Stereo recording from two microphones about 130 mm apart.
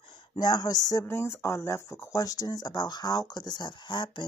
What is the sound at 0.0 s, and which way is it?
A woman's voice, 40° left (ahead or behind).